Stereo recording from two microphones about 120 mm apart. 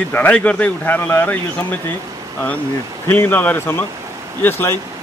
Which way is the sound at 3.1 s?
15° left (ahead or behind).